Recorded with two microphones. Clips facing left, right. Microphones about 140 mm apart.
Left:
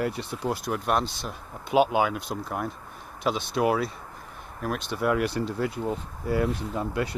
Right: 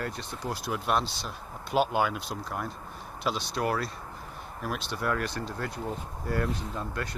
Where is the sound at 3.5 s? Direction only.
5° left (ahead or behind).